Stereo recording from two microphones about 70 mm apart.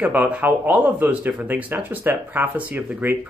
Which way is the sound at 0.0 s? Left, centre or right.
Right.